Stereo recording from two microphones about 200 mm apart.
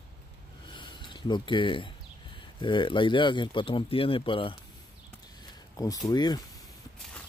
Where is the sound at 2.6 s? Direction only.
25° left (ahead or behind).